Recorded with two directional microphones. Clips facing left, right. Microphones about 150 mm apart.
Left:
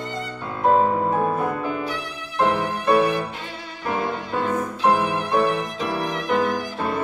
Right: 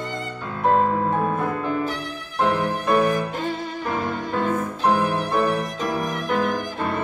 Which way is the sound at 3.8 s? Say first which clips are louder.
Left 3 dB; 15° left (ahead or behind).